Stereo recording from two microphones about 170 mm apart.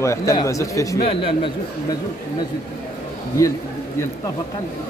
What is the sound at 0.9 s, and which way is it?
Speech, 35° left (ahead or behind).